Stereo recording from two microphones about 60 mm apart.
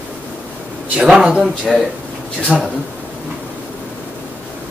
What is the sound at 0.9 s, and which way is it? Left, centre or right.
A man's voice, centre.